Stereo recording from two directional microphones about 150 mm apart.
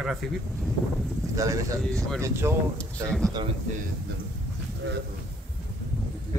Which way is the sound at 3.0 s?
5° left (ahead or behind).